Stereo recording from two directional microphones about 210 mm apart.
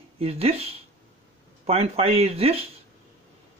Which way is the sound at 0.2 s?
30° right (ahead or behind).